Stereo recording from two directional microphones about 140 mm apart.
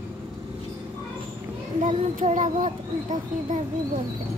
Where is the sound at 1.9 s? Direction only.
60° right (ahead or behind).